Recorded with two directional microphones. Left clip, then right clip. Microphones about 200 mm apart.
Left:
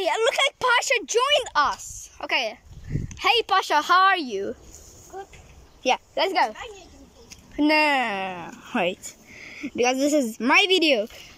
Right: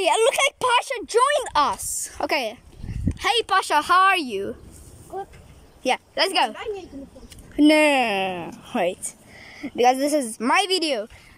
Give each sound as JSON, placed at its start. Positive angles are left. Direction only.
{"t": 0.0, "sound": "a sound", "side_deg": -15}
{"t": 0.7, "sound": "speech", "side_deg": 10}
{"t": 1.5, "sound": "a woman's voice", "side_deg": -15}
{"t": 3.1, "sound": "speech", "side_deg": 0}
{"t": 5.1, "sound": "a sound", "side_deg": -15}
{"t": 5.8, "sound": "speech", "side_deg": -5}
{"t": 7.5, "sound": "speech", "side_deg": -10}